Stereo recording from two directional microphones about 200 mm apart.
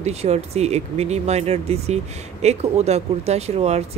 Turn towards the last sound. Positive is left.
turn(degrees=-30)  # may be behind; listen again after turning